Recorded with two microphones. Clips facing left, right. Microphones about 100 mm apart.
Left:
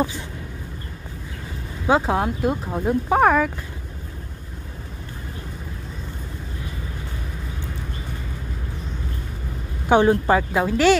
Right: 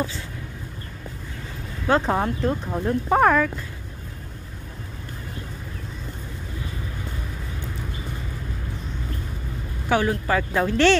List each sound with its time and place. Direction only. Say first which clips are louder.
1.9 s speech: left 1 dB; 5° left (ahead or behind)
9.8 s speech: left 6 dB; 25° left (ahead or behind)
10.5 s speech: right 2 dB; 10° left (ahead or behind)